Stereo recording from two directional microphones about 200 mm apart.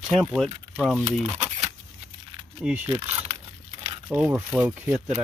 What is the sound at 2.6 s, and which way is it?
Speech, 10° right (ahead or behind).